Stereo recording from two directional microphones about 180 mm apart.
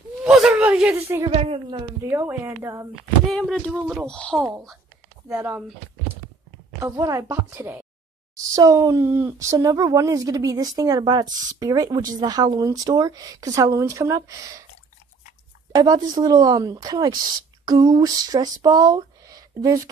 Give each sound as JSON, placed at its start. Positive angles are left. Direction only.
{"t": 0.2, "sound": "a sound", "side_deg": -5}
{"t": 1.3, "sound": "a woman's voice", "side_deg": -30}
{"t": 2.0, "sound": "speech", "side_deg": -15}
{"t": 3.3, "sound": "speech", "side_deg": 0}
{"t": 5.3, "sound": "speech", "side_deg": -15}
{"t": 6.8, "sound": "speech", "side_deg": -20}
{"t": 11.2, "sound": "speech", "side_deg": -45}
{"t": 11.6, "sound": "speech", "side_deg": -20}
{"t": 15.7, "sound": "speech", "side_deg": -20}